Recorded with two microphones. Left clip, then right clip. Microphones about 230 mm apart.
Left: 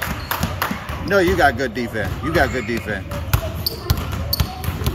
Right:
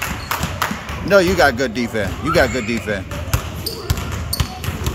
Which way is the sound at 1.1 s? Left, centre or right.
Right.